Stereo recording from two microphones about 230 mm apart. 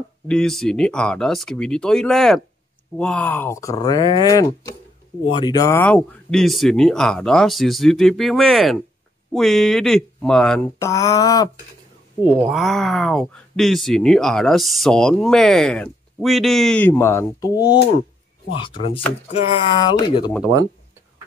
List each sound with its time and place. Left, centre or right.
0.3 s speech: centre
10.9 s speech: centre
12.4 s speech: centre